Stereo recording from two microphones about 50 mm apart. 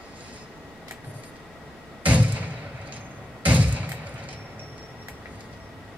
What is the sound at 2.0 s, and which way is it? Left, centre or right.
Thump, right.